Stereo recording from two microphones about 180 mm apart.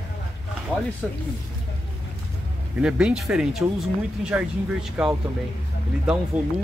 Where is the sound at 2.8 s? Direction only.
5° right (ahead or behind).